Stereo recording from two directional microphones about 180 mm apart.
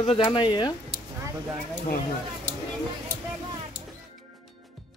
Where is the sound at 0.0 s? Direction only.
30° left (ahead or behind).